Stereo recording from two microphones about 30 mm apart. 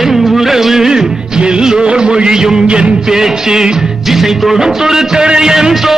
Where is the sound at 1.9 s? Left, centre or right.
Right.